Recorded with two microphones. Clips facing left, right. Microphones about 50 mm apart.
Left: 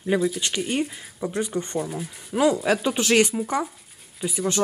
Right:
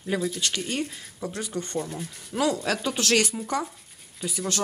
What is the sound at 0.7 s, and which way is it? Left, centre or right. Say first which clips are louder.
Speech: left 4 dB; centre.